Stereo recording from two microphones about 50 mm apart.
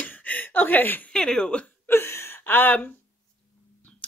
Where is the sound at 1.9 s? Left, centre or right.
Left.